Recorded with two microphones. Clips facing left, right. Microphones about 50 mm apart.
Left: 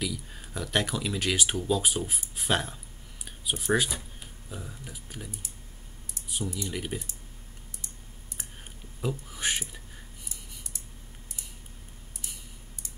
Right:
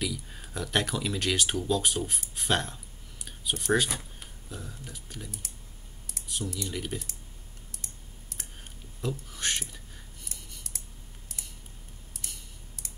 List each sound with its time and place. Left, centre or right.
0.0 s speech: centre
7.7 s computer keyboard: right
9.0 s speech: centre